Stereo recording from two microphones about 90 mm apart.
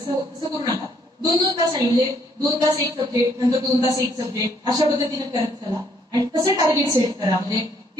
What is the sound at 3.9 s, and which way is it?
A woman's voice, 45° right (ahead or behind).